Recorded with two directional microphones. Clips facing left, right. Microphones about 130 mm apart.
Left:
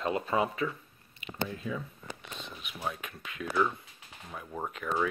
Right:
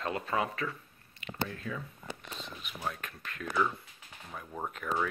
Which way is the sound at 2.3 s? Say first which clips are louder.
Even; centre (ahead or behind).